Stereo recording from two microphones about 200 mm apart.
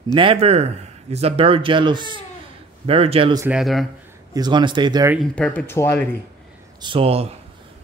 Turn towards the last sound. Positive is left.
turn(degrees=-30)  # may be behind; listen again after turning